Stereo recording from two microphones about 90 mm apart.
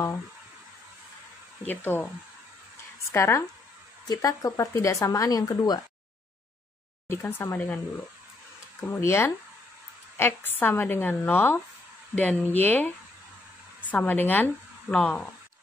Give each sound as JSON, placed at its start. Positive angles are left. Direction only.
{"t": 3.1, "sound": "speech", "side_deg": 30}
{"t": 4.1, "sound": "speech", "side_deg": 45}
{"t": 7.1, "sound": "speech", "side_deg": 25}
{"t": 8.8, "sound": "speech", "side_deg": 25}